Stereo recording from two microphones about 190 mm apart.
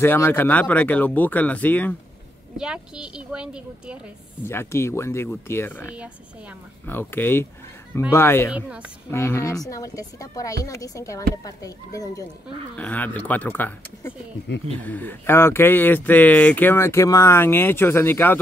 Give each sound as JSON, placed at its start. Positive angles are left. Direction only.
{"t": 0.0, "sound": "speech", "side_deg": 10}
{"t": 2.5, "sound": "a woman's voice", "side_deg": -5}
{"t": 4.5, "sound": "speech", "side_deg": 15}
{"t": 5.9, "sound": "a woman's voice", "side_deg": -5}
{"t": 6.9, "sound": "speech", "side_deg": 10}
{"t": 8.5, "sound": "a woman's voice", "side_deg": -5}
{"t": 9.1, "sound": "speech", "side_deg": 15}